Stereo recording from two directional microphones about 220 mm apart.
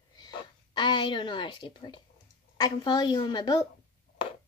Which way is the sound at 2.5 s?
20° left (ahead or behind).